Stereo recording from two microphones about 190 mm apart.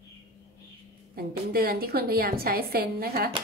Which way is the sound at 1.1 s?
50° right (ahead or behind).